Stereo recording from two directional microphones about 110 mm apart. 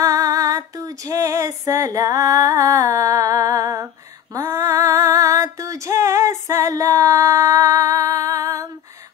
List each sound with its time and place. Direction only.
0.0 s female singing: 30° right (ahead or behind)